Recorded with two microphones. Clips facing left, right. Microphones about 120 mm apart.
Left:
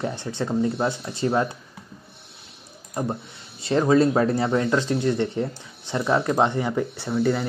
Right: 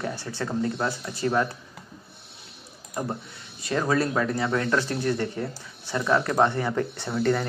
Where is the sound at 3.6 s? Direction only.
25° left (ahead or behind).